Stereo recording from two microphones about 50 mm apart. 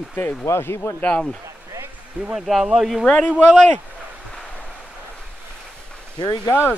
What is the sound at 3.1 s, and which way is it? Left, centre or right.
Speech, centre.